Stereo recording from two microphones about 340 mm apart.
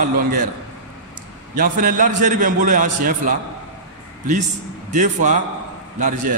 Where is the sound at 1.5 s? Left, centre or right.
Right.